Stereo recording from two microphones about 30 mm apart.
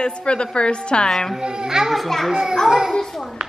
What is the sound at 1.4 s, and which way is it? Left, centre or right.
Speech, right.